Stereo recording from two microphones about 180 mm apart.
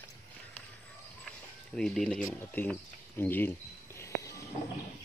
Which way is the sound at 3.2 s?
10° left (ahead or behind).